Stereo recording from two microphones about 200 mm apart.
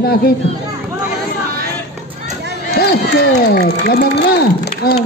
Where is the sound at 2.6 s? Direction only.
50° left (ahead or behind).